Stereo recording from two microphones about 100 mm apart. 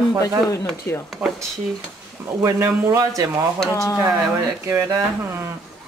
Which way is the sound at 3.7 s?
30° left (ahead or behind).